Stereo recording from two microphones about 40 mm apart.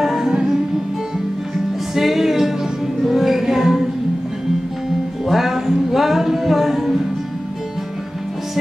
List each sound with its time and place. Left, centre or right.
0.0 s music: centre
2.0 s music: centre
5.2 s music: centre